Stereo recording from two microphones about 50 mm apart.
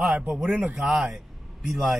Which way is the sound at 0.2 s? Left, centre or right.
Right.